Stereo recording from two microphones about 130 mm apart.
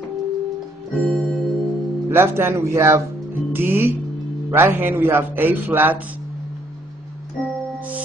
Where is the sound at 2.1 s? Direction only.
20° right (ahead or behind).